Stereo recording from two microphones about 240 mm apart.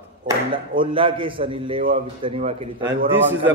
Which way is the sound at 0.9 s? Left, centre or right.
Right.